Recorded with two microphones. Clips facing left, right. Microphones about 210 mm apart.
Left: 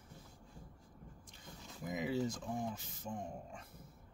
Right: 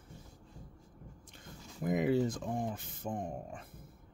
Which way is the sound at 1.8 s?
55° right (ahead or behind).